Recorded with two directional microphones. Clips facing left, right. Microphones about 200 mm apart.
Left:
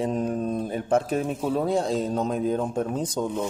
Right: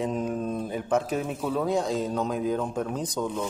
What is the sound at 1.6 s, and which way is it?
Speech, 30° left (ahead or behind).